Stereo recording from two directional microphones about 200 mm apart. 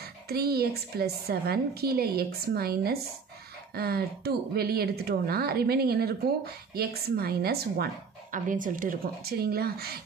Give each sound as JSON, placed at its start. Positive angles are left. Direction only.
{"t": 0.3, "sound": "speech", "side_deg": -50}